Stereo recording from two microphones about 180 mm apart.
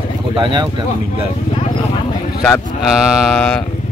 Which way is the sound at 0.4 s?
25° right (ahead or behind).